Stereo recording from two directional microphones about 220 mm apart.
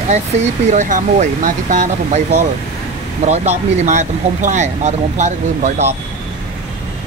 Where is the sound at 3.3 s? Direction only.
30° right (ahead or behind).